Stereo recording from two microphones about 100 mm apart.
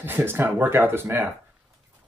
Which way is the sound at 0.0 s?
20° right (ahead or behind).